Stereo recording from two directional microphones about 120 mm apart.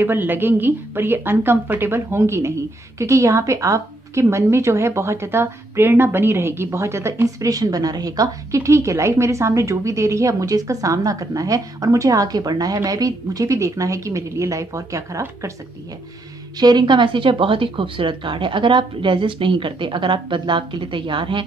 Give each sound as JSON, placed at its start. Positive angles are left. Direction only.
{"t": 0.0, "sound": "a woman's voice", "side_deg": -15}
{"t": 16.5, "sound": "speech", "side_deg": -35}